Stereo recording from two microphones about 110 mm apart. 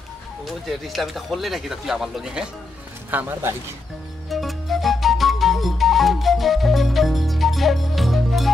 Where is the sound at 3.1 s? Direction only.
15° right (ahead or behind).